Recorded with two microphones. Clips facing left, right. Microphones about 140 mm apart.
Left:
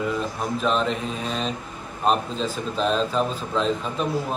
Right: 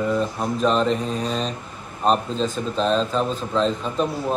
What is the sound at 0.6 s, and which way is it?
Speech, centre (ahead or behind).